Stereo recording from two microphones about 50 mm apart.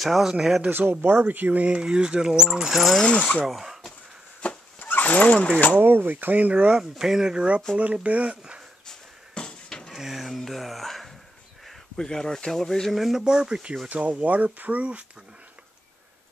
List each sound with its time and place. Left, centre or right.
0.0 s speech: centre
0.7 s speech: right
1.8 s speech: centre
3.0 s speech: left
3.4 s a sound: centre
4.4 s chopping: left
4.7 s a sound: left
5.8 s speech: right
6.7 s speech: centre
8.8 s a sound: centre
9.9 s speech: centre
12.9 s speech: centre
13.8 s speech: right